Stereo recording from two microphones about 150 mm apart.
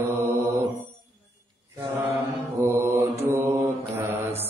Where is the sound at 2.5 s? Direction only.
20° right (ahead or behind).